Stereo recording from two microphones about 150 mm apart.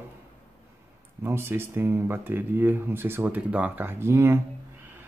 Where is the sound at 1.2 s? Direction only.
15° right (ahead or behind).